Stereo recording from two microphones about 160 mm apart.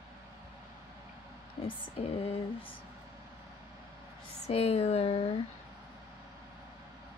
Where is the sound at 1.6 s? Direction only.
35° left (ahead or behind).